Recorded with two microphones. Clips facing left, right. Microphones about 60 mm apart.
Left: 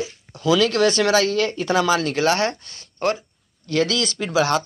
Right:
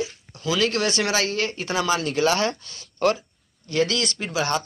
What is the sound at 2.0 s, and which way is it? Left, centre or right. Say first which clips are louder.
Speech: left 2 dB; left.